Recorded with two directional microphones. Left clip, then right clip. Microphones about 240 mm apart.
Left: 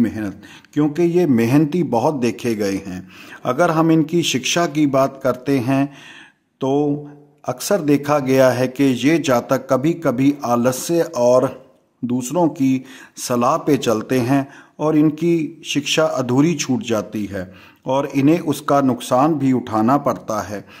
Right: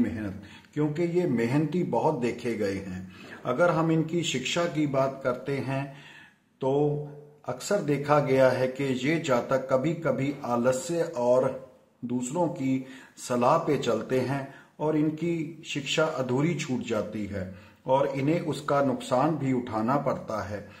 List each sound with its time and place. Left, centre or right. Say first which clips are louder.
0.7 s a man's voice: left 11 dB; left
7.4 s a man's voice: left 9 dB; left